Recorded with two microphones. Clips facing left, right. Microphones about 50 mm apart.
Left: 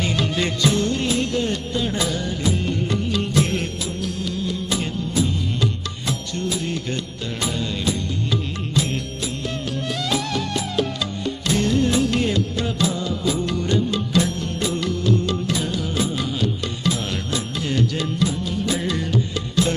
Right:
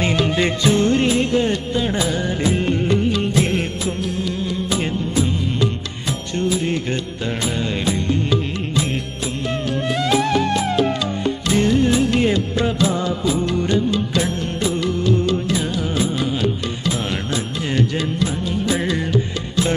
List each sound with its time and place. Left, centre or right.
0.0 s music: right
2.4 s music: right
6.3 s music: right
9.5 s music: right
11.5 s music: right